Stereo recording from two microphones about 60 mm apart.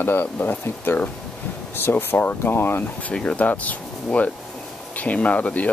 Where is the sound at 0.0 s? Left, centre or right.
Left.